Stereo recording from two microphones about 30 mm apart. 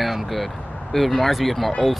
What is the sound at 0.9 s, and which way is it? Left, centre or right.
Speech, centre.